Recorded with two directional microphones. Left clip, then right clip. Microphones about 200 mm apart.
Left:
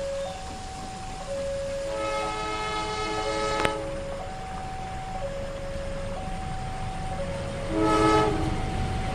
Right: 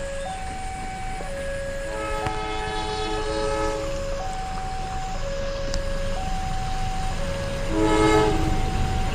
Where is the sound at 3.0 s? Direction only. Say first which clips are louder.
Right 1 dB; 25° left (ahead or behind).